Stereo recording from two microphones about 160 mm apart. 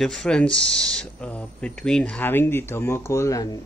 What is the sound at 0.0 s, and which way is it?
Speech, centre (ahead or behind).